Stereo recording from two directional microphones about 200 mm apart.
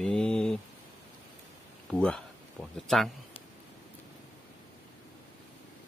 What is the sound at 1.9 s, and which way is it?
Speech, 5° left (ahead or behind).